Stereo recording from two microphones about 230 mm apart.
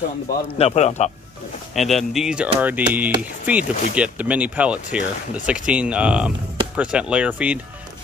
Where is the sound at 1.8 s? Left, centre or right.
Centre.